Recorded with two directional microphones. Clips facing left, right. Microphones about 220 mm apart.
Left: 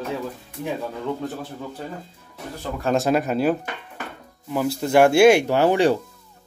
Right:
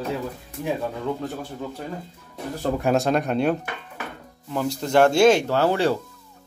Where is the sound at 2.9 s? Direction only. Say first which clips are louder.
Left 3 dB; 5° left (ahead or behind).